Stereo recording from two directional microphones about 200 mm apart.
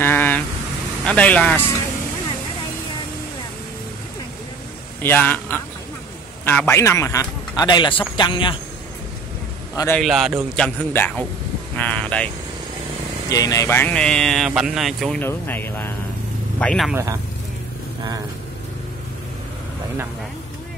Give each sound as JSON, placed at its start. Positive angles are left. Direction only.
{"t": 0.0, "sound": "vehicle", "side_deg": 10}
{"t": 1.0, "sound": "speech", "side_deg": 5}
{"t": 5.0, "sound": "a man's voice", "side_deg": 10}
{"t": 9.9, "sound": "speech", "side_deg": 0}
{"t": 13.3, "sound": "speech", "side_deg": 15}
{"t": 16.9, "sound": "speech", "side_deg": -15}